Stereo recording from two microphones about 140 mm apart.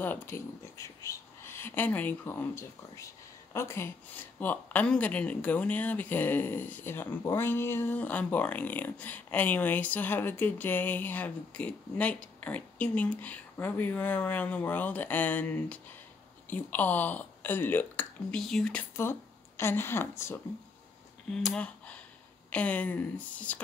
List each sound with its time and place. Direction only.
0.0 s speech: 15° left (ahead or behind)
21.3 s speech: centre (ahead or behind)